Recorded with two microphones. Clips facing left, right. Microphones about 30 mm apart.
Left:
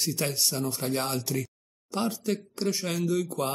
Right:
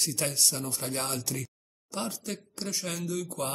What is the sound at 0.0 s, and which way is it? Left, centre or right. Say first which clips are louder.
Speech: left 1 dB; centre.